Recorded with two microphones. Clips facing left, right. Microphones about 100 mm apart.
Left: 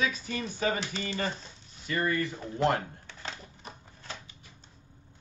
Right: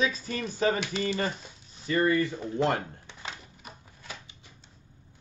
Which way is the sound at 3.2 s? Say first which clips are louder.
Even; 5° right (ahead or behind).